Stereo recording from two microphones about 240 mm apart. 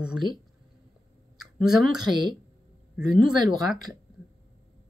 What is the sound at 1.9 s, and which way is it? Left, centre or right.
Speech, centre.